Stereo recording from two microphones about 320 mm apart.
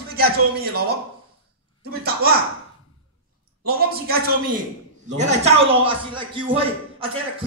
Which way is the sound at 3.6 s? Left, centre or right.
Right.